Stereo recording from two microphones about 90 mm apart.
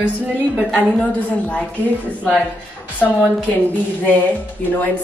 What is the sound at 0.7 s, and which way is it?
Speech, 15° left (ahead or behind).